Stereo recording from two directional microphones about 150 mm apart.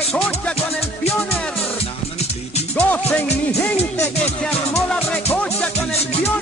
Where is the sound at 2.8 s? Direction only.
10° left (ahead or behind).